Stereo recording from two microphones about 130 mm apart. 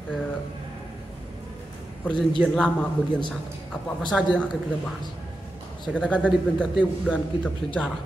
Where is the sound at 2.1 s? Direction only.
10° left (ahead or behind).